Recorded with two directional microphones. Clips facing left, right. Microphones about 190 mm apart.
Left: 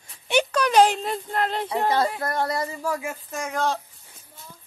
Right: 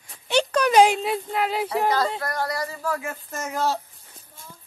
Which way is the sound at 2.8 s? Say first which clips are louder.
Even; 15° left (ahead or behind).